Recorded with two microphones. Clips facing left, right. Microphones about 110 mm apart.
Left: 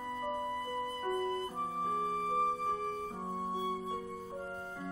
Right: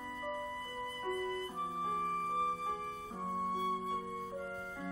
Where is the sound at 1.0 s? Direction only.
40° left (ahead or behind).